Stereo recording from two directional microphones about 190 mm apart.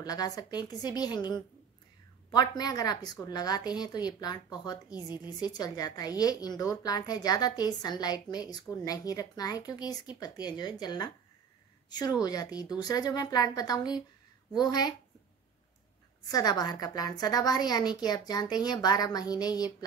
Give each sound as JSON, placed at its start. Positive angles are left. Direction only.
{"t": 0.0, "sound": "a woman's voice", "side_deg": 20}
{"t": 16.3, "sound": "a woman's voice", "side_deg": 20}